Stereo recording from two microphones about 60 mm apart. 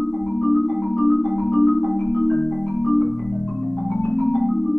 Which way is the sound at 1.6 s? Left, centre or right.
Centre.